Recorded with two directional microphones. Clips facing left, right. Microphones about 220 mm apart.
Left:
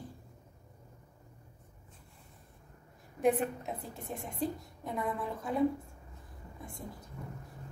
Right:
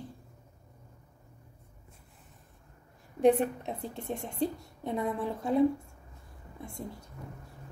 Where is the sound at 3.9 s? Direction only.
25° right (ahead or behind).